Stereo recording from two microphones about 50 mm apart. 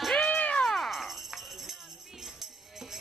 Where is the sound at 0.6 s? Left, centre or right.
Centre.